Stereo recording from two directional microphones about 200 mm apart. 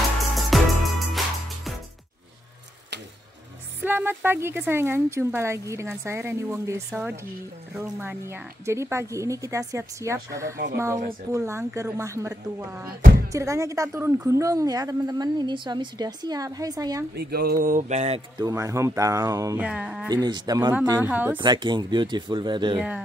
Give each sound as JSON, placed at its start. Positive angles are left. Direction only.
{"t": 0.4, "sound": "music", "side_deg": 0}
{"t": 3.8, "sound": "a woman's voice", "side_deg": -10}
{"t": 17.1, "sound": "speech", "side_deg": -50}
{"t": 18.4, "sound": "a woman's voice", "side_deg": -15}
{"t": 19.6, "sound": "speech", "side_deg": -5}
{"t": 20.1, "sound": "speech", "side_deg": -20}
{"t": 21.1, "sound": "a woman's voice", "side_deg": -10}
{"t": 21.4, "sound": "speech", "side_deg": -25}
{"t": 22.8, "sound": "a woman's voice", "side_deg": -5}